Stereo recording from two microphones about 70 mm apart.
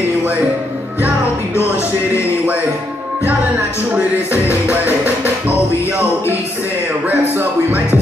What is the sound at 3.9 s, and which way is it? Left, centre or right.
Music, right.